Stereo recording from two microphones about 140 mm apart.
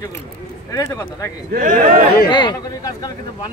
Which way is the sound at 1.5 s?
85° right.